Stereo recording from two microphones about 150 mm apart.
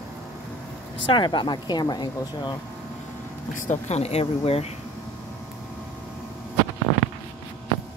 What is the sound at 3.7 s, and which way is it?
Speech, 45° left (ahead or behind).